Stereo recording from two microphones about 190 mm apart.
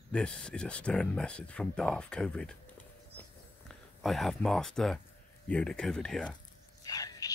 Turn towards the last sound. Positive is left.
turn(degrees=20)  # may be behind; listen again after turning